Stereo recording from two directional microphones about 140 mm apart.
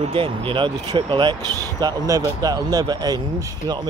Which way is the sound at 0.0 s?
40° right (ahead or behind).